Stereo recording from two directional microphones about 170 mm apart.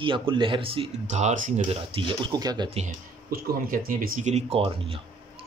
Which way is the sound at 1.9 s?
30° right (ahead or behind).